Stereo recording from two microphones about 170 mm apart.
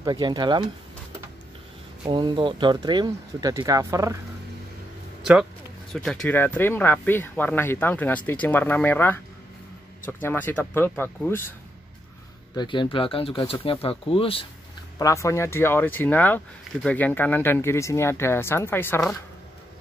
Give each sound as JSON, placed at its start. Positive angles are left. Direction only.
{"t": 0.0, "sound": "speech", "side_deg": -25}
{"t": 2.0, "sound": "speech", "side_deg": -25}
{"t": 5.2, "sound": "speech", "side_deg": -5}
{"t": 5.9, "sound": "speech", "side_deg": 10}
{"t": 12.5, "sound": "speech", "side_deg": 30}
{"t": 15.0, "sound": "speech", "side_deg": 20}